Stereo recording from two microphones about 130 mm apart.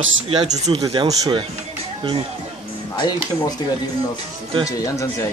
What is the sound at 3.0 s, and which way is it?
Speech, 35° left (ahead or behind).